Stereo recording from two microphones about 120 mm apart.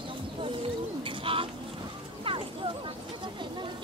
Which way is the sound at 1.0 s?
50° right (ahead or behind).